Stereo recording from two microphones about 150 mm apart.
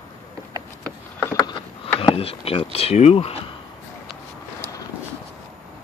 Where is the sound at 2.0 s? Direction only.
40° left (ahead or behind).